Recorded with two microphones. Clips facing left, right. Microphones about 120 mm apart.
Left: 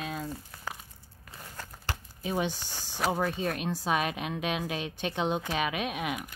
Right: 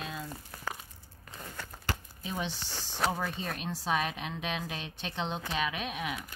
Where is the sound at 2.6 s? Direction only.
10° left (ahead or behind).